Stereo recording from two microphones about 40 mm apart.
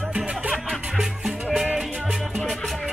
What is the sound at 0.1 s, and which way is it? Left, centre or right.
Music, centre.